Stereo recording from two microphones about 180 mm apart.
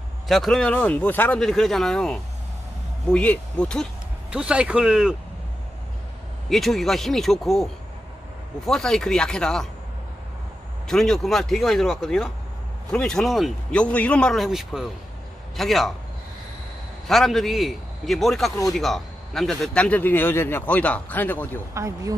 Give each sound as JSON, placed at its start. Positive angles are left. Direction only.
{"t": 0.3, "sound": "speech", "side_deg": 0}
{"t": 4.3, "sound": "speech", "side_deg": -5}
{"t": 6.5, "sound": "speech", "side_deg": 0}
{"t": 10.9, "sound": "speech", "side_deg": 5}
{"t": 17.1, "sound": "speech", "side_deg": 0}
{"t": 21.7, "sound": "speech", "side_deg": -15}